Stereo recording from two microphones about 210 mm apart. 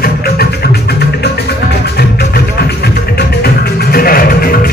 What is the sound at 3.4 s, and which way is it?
Music, 45° left (ahead or behind).